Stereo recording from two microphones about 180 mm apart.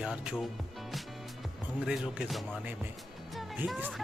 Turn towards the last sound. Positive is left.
turn(degrees=-10)  # may be behind; listen again after turning